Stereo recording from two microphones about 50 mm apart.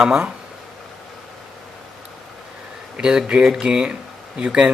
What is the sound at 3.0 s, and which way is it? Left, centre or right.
Speech, centre.